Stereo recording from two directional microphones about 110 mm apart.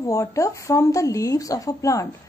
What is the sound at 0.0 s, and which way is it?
A woman's voice, 30° left (ahead or behind).